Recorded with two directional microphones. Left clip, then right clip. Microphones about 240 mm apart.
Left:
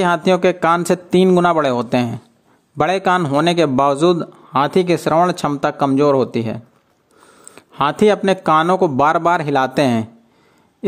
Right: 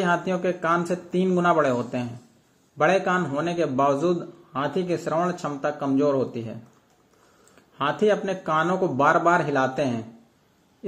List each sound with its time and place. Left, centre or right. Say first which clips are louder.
0.0 s a man's voice: left 9 dB; left
7.5 s a man's voice: left 8 dB; left